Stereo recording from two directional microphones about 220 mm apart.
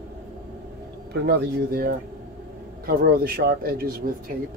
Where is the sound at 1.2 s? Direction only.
45° right (ahead or behind).